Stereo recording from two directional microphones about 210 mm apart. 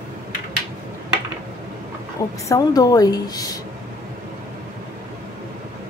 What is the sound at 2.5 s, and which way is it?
Speech, 15° left (ahead or behind).